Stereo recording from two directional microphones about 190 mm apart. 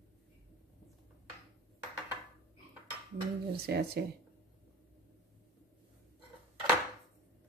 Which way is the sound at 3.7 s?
60° right (ahead or behind).